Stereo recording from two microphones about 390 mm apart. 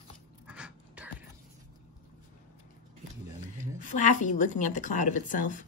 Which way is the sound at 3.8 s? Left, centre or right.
Left.